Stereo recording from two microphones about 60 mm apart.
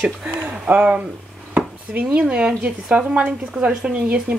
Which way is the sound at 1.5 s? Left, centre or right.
Right.